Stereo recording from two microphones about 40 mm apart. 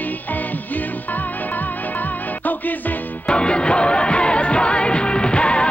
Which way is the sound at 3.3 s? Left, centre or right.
Left.